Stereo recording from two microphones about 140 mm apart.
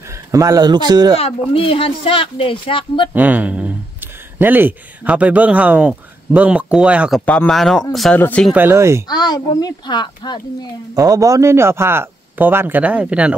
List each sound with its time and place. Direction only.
0.3 s speech: 25° right (ahead or behind)
1.5 s speech: 40° left (ahead or behind)
3.1 s speech: 10° right (ahead or behind)
7.2 s speech: 10° left (ahead or behind)
8.5 s speech: 20° right (ahead or behind)
9.0 s a child's voice: 30° left (ahead or behind)
11.0 s speech: 25° right (ahead or behind); by 13.4 s 10° right (ahead or behind)